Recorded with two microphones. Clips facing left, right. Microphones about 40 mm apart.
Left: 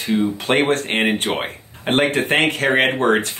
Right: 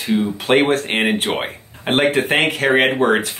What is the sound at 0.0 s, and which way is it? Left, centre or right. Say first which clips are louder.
Speech: even; centre.